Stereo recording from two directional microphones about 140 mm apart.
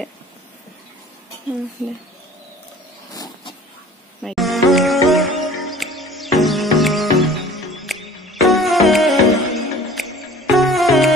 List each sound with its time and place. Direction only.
3.1 s vehicle: 25° left (ahead or behind)
4.2 s music: centre (ahead or behind)